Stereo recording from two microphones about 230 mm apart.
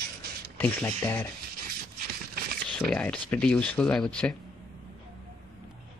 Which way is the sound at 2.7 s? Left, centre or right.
Centre.